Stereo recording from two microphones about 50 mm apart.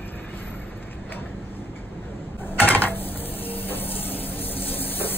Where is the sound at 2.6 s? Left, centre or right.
Left.